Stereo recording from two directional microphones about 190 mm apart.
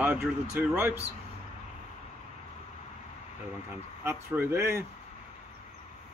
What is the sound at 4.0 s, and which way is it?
Speech, 15° right (ahead or behind).